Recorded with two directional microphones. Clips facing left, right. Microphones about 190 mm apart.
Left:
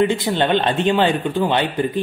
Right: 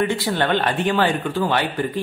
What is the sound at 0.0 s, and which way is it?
A woman's voice, 20° left (ahead or behind).